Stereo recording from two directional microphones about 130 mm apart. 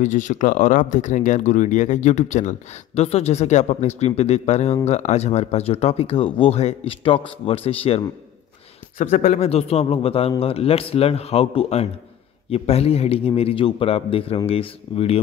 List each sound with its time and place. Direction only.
0.0 s speech: 70° left (ahead or behind)
3.0 s speech: 55° left (ahead or behind)
8.9 s speech: 80° left; by 15.2 s 50° left (ahead or behind)